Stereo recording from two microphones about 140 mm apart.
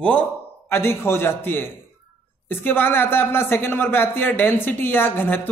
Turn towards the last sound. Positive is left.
turn(degrees=15)  # may be behind; listen again after turning